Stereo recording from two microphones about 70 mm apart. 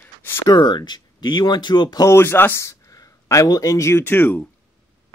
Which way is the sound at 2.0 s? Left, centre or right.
Left.